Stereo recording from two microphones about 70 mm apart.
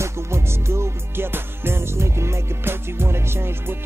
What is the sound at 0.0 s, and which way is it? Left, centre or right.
Music, right.